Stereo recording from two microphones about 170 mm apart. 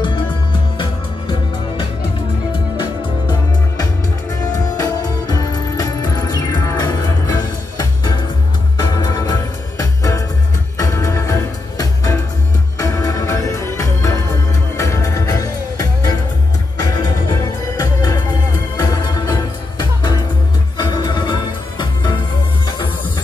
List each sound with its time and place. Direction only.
0.0 s music: 30° left (ahead or behind)
2.8 s music: 25° left (ahead or behind)
16.8 s music: 25° left (ahead or behind)